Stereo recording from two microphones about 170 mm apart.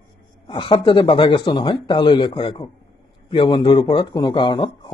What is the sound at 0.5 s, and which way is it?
Speech, 30° left (ahead or behind).